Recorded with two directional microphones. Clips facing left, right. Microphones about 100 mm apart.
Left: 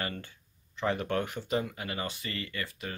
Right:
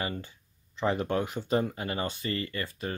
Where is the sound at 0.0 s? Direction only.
20° right (ahead or behind).